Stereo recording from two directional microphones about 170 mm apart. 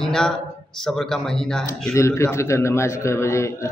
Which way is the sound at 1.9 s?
15° left (ahead or behind).